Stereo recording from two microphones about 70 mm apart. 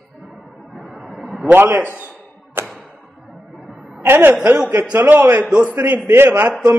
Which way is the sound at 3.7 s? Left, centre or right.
Centre.